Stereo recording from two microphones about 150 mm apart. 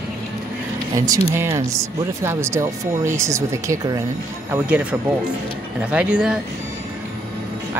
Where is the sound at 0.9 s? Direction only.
25° right (ahead or behind).